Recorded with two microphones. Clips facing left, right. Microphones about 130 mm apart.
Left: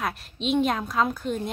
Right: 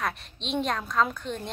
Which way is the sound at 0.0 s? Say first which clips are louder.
Left 3 dB; 5° left (ahead or behind).